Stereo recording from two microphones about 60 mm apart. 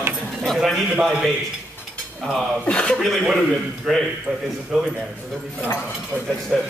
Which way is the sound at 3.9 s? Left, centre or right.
Centre.